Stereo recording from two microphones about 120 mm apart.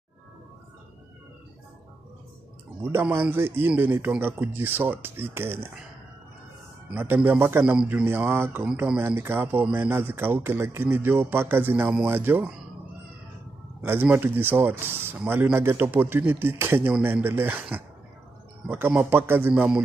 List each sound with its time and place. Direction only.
2.8 s speech: 20° right (ahead or behind)
6.9 s speech: 15° right (ahead or behind)
13.7 s speech: 20° right (ahead or behind)